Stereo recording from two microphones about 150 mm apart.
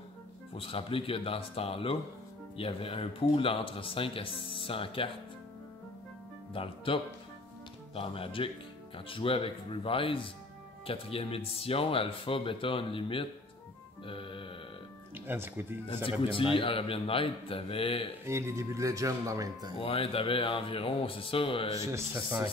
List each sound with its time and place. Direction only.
0.6 s speech: 40° left (ahead or behind)
6.5 s speech: 35° left (ahead or behind)
14.0 s music: 35° left (ahead or behind)
15.1 s speech: 15° right (ahead or behind)
16.1 s speech: 35° left (ahead or behind)
18.2 s speech: 20° right (ahead or behind)
19.8 s speech: 40° left (ahead or behind)
21.7 s speech: 20° right (ahead or behind)